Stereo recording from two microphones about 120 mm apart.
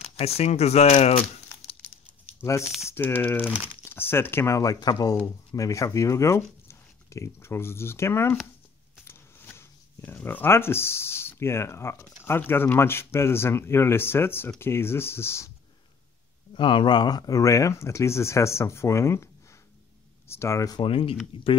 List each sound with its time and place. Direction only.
0.1 s speech: 60° left (ahead or behind)
2.9 s speech: 15° left (ahead or behind)
16.5 s speech: 40° left (ahead or behind); by 19.2 s 25° left (ahead or behind)
20.2 s speech: 25° left (ahead or behind)
20.8 s speech: 50° left (ahead or behind)